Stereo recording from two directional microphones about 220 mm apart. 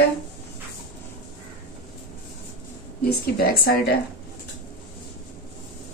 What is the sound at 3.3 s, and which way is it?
Speech, 45° left (ahead or behind).